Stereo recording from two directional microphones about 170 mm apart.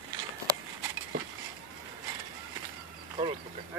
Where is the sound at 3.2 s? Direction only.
30° right (ahead or behind).